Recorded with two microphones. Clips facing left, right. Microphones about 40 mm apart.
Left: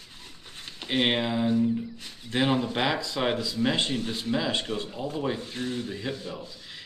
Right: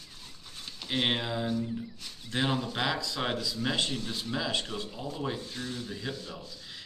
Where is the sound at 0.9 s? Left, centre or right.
Left.